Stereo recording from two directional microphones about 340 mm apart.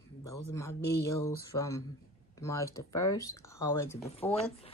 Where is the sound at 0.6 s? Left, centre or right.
Centre.